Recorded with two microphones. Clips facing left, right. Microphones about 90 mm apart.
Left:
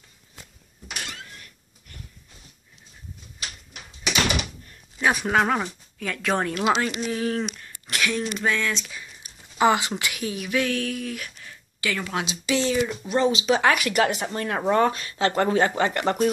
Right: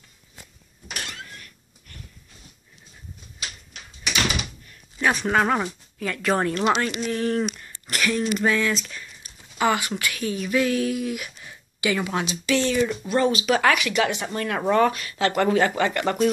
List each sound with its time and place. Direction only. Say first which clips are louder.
3.7 s a sound: left 2 dB; 20° left (ahead or behind)
4.9 s speech: even; 5° left (ahead or behind)
8.9 s a sound: even; 15° left (ahead or behind)
10.5 s speech: right 3 dB; 5° right (ahead or behind)
12.4 s speech: right 1 dB; 10° left (ahead or behind)
13.7 s speech: left 1 dB; 45° left (ahead or behind)
14.2 s speech: even; 30° left (ahead or behind)